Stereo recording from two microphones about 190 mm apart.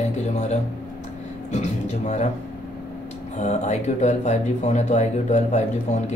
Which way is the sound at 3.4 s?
35° left (ahead or behind).